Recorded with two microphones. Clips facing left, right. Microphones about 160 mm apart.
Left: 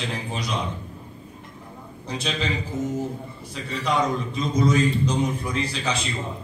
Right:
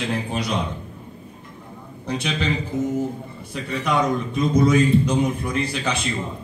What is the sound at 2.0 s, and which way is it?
Speech, 60° right (ahead or behind).